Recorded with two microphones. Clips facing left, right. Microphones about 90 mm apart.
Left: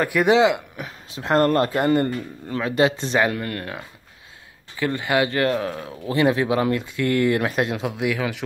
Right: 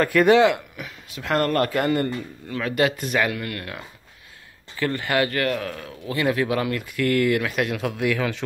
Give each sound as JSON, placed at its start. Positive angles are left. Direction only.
{"t": 0.0, "sound": "speech", "side_deg": 15}
{"t": 0.7, "sound": "speech", "side_deg": 35}
{"t": 4.7, "sound": "speech", "side_deg": 15}
{"t": 7.8, "sound": "speech", "side_deg": 15}